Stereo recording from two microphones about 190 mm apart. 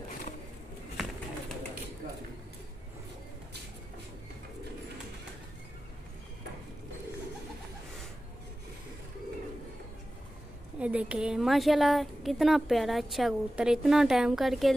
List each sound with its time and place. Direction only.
10.8 s a woman's voice: 5° right (ahead or behind)